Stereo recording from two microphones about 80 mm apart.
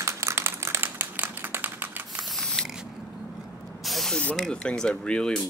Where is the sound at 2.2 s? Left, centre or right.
Centre.